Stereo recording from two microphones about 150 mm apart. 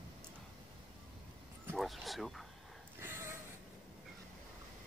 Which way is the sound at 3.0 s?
15° right (ahead or behind).